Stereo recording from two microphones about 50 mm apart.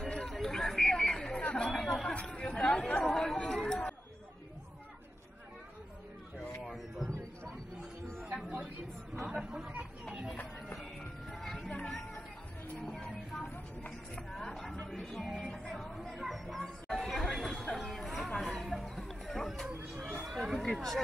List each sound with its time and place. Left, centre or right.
0.0 s a sound: centre
1.7 s chatter: centre
3.0 s chatter: centre
6.6 s a sound: centre
8.3 s a sound: centre
9.3 s chatter: centre
11.7 s chatter: left
12.8 s music: centre
14.3 s music: centre
16.2 s chatter: centre
18.4 s a sound: centre
20.7 s chatter: centre